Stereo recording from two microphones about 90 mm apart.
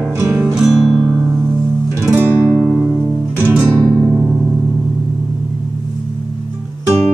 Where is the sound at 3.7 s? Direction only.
10° left (ahead or behind).